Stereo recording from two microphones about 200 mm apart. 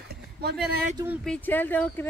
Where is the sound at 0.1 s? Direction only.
55° right (ahead or behind).